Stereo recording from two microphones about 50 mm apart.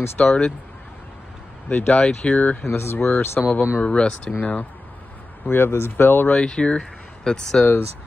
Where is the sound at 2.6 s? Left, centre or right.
Left.